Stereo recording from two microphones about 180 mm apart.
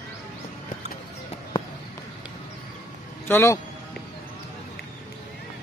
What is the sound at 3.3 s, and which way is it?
Speech, 15° left (ahead or behind).